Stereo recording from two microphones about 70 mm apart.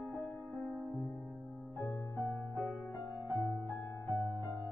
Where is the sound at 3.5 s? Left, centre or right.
Left.